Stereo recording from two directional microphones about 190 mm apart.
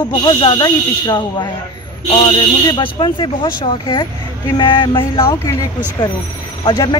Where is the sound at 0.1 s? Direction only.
25° left (ahead or behind).